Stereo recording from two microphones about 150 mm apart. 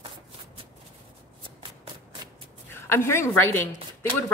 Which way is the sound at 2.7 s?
15° left (ahead or behind).